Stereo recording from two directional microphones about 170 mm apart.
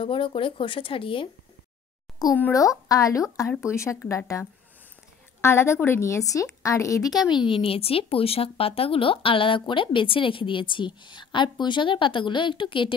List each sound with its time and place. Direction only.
0.0 s speech: 30° left (ahead or behind)
2.3 s speech: 15° left (ahead or behind); by 12.9 s 30° left (ahead or behind)